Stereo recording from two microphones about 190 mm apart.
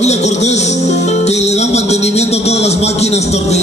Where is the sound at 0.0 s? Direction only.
35° left (ahead or behind).